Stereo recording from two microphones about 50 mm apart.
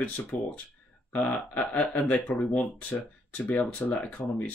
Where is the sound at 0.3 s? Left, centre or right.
Left.